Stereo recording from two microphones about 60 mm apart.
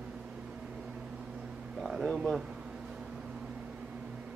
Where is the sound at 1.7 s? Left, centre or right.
Centre.